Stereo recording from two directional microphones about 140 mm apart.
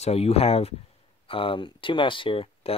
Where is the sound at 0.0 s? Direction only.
45° left (ahead or behind).